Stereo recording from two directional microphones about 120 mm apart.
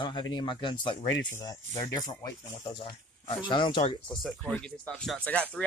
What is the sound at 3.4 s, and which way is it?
Speech, 40° left (ahead or behind).